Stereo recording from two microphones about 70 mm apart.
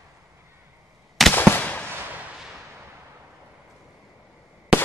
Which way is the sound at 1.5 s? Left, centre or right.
Left.